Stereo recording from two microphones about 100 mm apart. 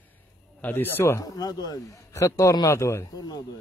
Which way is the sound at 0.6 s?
20° left (ahead or behind).